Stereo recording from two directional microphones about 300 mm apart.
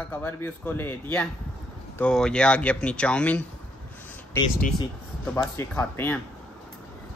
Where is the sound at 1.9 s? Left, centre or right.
Centre.